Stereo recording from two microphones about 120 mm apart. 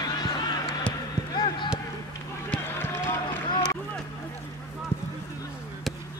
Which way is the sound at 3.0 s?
40° left (ahead or behind).